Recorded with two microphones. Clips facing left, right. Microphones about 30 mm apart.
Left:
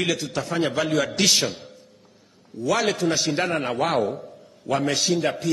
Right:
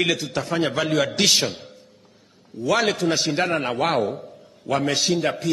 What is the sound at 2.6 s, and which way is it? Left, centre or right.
A man's voice, centre.